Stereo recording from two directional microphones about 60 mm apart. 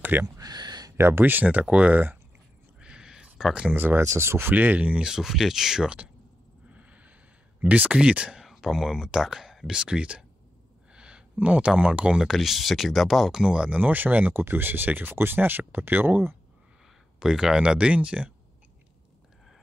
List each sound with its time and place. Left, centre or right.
0.0 s speech: right
0.4 s a sound: right
0.9 s speech: right
2.8 s a sound: centre
3.7 s speech: right
4.0 s speech: right
4.5 s speech: right
5.0 s speech: centre
6.7 s a sound: right
7.6 s speech: right
8.4 s speech: centre
12.3 s speech: centre
13.3 s speech: centre; by 16.3 s right
17.2 s speech: centre